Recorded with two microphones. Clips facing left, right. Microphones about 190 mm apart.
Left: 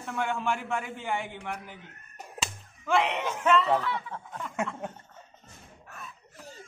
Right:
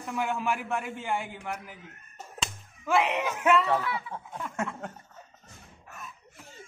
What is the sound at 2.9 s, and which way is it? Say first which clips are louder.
A man's voice: right 1 dB; 5° right (ahead or behind).